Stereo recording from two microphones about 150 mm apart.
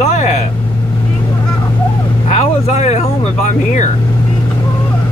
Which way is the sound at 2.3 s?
50° left (ahead or behind).